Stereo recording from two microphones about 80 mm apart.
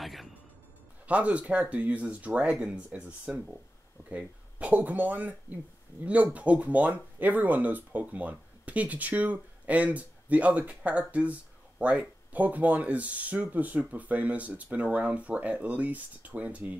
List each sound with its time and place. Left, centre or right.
0.0 s music: centre
1.0 s speech: centre